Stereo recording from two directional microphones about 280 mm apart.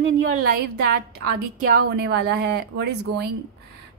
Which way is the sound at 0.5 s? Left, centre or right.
Right.